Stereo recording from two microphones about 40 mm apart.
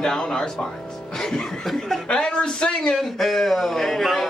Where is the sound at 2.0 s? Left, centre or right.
Left.